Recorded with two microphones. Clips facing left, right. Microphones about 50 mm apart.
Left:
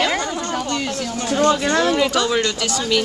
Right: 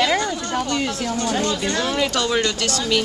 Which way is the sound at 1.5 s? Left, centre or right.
Left.